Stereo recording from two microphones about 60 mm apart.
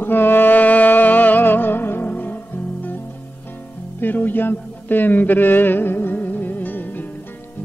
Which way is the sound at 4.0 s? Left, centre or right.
Left.